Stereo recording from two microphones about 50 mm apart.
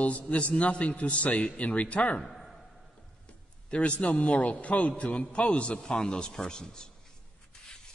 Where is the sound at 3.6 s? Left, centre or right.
Left.